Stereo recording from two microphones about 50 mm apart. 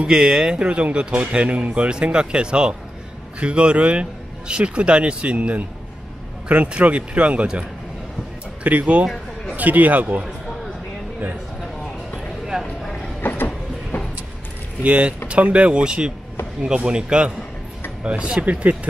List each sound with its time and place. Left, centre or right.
0.0 s a man's voice: centre
8.6 s a man's voice: right
12.5 s speech: centre
14.8 s a man's voice: right